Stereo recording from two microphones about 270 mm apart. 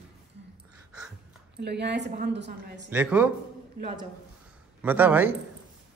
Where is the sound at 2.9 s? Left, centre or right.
Centre.